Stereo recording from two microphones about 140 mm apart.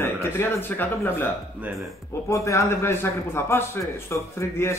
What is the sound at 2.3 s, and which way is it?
A man's voice, 20° left (ahead or behind).